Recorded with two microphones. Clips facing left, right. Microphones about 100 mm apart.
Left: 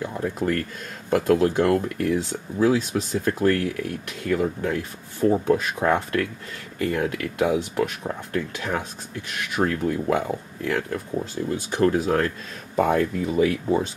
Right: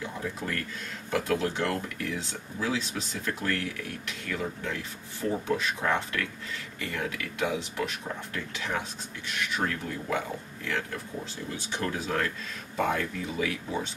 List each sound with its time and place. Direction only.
0.0 s speech: 50° left (ahead or behind)